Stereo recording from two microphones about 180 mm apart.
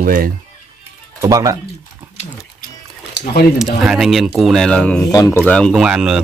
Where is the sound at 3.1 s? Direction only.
60° left (ahead or behind).